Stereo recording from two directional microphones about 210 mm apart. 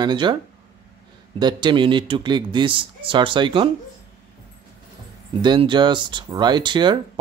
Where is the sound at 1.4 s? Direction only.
20° right (ahead or behind).